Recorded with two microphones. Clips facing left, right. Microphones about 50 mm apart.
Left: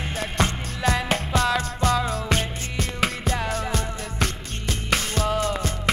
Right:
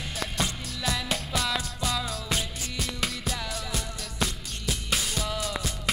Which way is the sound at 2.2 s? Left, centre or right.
Left.